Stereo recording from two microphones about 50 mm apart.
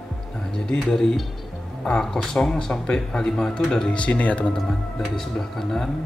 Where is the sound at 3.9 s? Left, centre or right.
Left.